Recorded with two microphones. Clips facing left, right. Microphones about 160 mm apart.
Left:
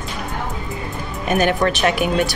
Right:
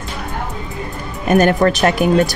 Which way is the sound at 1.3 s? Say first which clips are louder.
Right 5 dB; 45° right (ahead or behind).